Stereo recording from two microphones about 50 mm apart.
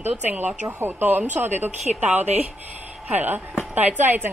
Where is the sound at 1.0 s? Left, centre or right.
Right.